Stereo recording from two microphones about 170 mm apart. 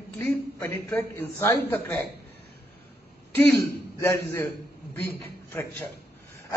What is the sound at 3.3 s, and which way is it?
A man's voice, 10° left (ahead or behind).